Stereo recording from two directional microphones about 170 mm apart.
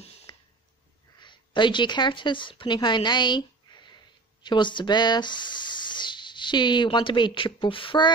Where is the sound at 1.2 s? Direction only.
25° left (ahead or behind).